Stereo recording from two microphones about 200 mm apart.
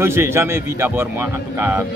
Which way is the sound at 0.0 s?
10° right (ahead or behind).